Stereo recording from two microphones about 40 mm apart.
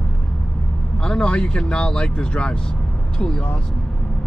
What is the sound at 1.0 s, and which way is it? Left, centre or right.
Speech, left.